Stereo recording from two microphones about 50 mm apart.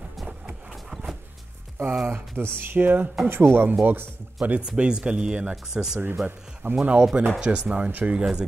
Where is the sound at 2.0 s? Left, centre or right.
Right.